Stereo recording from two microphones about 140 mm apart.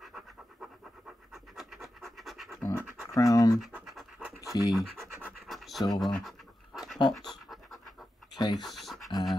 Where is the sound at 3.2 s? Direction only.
25° left (ahead or behind).